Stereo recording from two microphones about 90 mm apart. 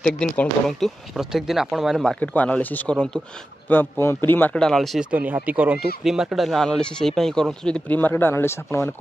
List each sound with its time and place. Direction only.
0.0 s speech: 10° left (ahead or behind)
2.0 s speech: 15° left (ahead or behind)
3.6 s speech: 25° left (ahead or behind)
4.6 s speech: 5° left (ahead or behind)
5.1 s speech: 15° right (ahead or behind)
5.8 s speech: 5° right (ahead or behind); by 8.9 s 25° left (ahead or behind)